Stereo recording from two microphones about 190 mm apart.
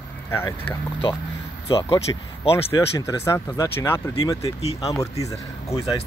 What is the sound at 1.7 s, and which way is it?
Speech, 25° left (ahead or behind).